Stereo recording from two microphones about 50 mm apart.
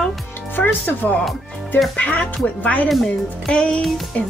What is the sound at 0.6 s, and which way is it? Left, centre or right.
Speech, left.